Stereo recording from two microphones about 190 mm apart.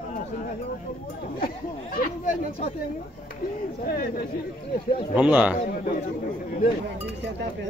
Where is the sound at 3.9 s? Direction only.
50° left (ahead or behind).